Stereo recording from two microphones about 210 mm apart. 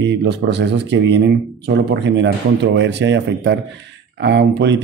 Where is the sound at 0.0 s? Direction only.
55° right (ahead or behind).